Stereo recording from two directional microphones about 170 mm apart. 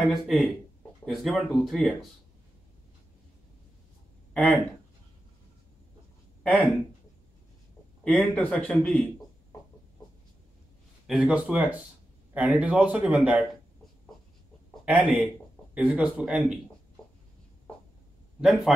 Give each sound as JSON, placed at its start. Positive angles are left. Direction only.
{"t": 0.0, "sound": "speech", "side_deg": 0}
{"t": 4.3, "sound": "speech", "side_deg": 0}
{"t": 6.4, "sound": "speech", "side_deg": 10}
{"t": 8.0, "sound": "a man's voice", "side_deg": 10}
{"t": 11.1, "sound": "speech", "side_deg": -5}
{"t": 14.9, "sound": "speech", "side_deg": -10}
{"t": 18.4, "sound": "speech", "side_deg": 0}